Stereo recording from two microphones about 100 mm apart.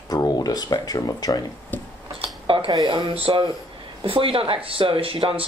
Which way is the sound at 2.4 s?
65° right (ahead or behind).